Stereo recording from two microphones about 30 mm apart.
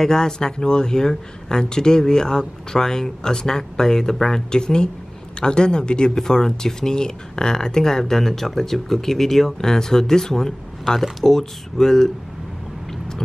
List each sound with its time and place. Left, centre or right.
0.0 s speech: left
6.1 s speech: centre
8.0 s speech: centre
9.6 s speech: centre